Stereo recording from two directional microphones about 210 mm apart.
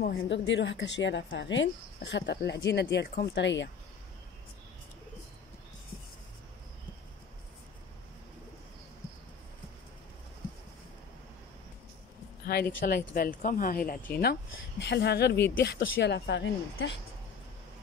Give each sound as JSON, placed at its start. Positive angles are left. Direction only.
{"t": 0.0, "sound": "a woman's voice", "side_deg": 55}
{"t": 12.8, "sound": "speech", "side_deg": 45}